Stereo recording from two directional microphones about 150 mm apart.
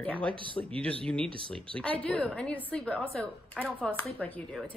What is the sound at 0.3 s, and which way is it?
Speech, 35° right (ahead or behind).